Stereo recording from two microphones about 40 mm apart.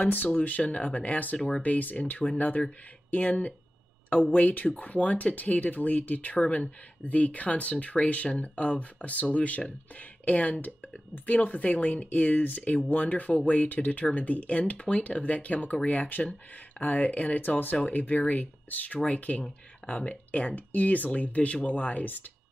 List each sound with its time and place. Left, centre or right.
0.0 s speech: left
17.4 s speech: left
20.2 s speech: left